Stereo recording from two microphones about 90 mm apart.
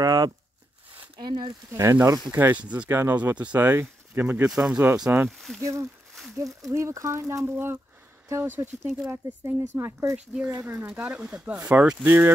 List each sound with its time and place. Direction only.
0.0 s a sound: 45° right (ahead or behind)
1.2 s speech: 55° right (ahead or behind)
1.7 s speech: 35° right (ahead or behind)
2.0 s speech: 50° right (ahead or behind)
2.3 s speech: 20° right (ahead or behind)
2.9 s speech: 30° right (ahead or behind)
3.2 s speech: 15° right (ahead or behind)
4.5 s speech: 5° right (ahead or behind)
5.1 s speech: 25° right (ahead or behind)
5.6 s speech: 35° right (ahead or behind)
10.1 s speech: 15° right (ahead or behind)